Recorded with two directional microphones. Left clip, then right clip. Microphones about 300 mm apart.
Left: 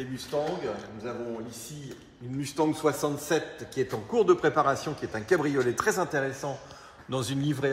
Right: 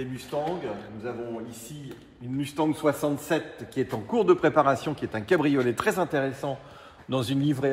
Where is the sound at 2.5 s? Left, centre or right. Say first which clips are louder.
Right 1 dB; right.